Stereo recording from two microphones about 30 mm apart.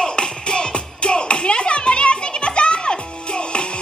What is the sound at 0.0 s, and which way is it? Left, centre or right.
Music, left.